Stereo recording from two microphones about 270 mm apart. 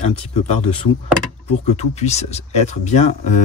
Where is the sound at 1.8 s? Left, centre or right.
Left.